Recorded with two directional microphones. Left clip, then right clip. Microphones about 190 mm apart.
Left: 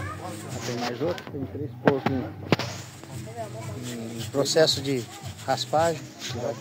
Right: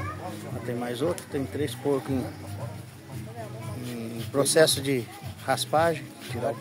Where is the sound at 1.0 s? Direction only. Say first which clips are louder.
Right 1 dB; 20° right (ahead or behind).